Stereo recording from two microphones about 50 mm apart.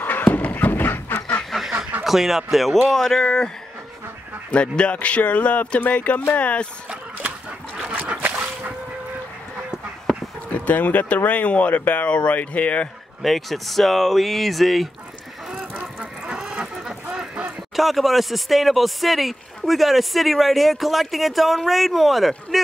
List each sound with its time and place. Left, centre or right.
0.0 s a sound: left
1.5 s duck: centre
2.0 s speech: centre; by 6.7 s left
6.9 s a sound: right
7.9 s dog: right
10.5 s speech: left
13.2 s speech: centre
16.0 s fowl: centre
17.7 s speech: centre